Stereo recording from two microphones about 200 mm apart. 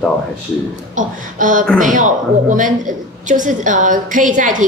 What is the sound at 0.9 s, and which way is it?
A woman's voice, 40° right (ahead or behind).